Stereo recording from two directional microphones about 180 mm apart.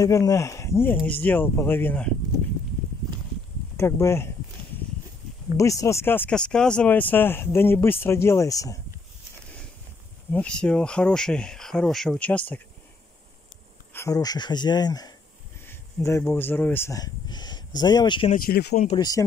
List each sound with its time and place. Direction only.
0.0 s speech: 20° left (ahead or behind)
3.7 s speech: 15° left (ahead or behind)
5.6 s speech: 15° left (ahead or behind)
10.3 s speech: 5° left (ahead or behind)
13.9 s speech: 20° left (ahead or behind)
18.3 s speech: 55° left (ahead or behind)
18.9 s speech: 20° left (ahead or behind)